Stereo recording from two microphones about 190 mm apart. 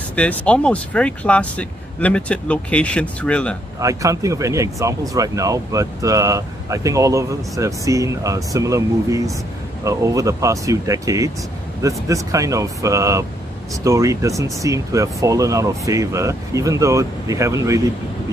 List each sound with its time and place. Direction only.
0.1 s speech: 5° left (ahead or behind)
3.8 s speech: 15° right (ahead or behind)